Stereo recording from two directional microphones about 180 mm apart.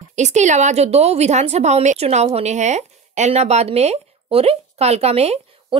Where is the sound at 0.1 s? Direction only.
40° right (ahead or behind).